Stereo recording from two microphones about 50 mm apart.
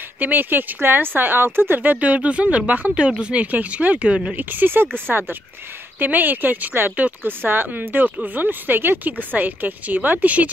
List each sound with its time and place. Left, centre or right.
0.2 s speech: right
1.8 s speech: right
3.5 s speech: right
4.4 s speech: right
7.0 s speech: right
7.4 s speech: right